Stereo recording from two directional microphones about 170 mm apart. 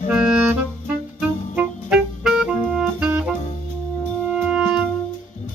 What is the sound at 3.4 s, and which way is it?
Music, 45° left (ahead or behind).